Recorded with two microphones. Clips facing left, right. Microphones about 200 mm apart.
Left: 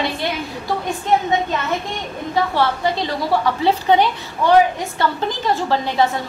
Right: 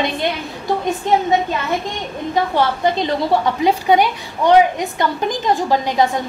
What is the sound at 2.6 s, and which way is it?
A woman's voice, 20° right (ahead or behind).